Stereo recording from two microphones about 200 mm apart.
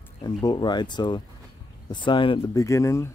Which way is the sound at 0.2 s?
20° left (ahead or behind).